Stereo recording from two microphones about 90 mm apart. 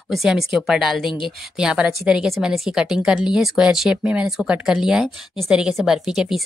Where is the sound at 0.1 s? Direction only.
5° right (ahead or behind).